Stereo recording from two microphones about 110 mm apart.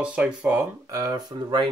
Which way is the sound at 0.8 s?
35° right (ahead or behind).